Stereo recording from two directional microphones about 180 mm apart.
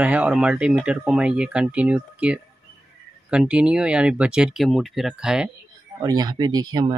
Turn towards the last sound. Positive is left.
turn(degrees=-25)  # may be behind; listen again after turning